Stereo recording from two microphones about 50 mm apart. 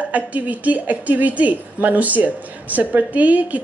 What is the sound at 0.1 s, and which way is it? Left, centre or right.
Speech, right.